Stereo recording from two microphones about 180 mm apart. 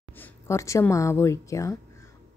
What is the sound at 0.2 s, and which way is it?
A woman's voice, 15° left (ahead or behind).